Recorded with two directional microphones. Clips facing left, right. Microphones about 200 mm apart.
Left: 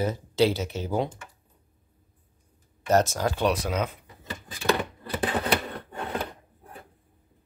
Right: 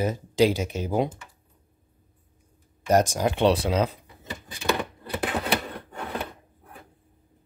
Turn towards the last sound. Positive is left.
turn(degrees=0)  # may be behind; listen again after turning